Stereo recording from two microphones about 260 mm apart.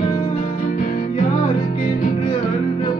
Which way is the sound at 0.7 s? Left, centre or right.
Left.